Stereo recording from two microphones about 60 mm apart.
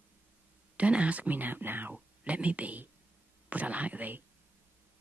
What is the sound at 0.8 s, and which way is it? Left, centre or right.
Speech, right.